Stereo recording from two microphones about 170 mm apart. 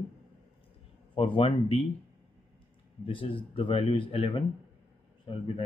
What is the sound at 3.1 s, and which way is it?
Speech, 30° left (ahead or behind).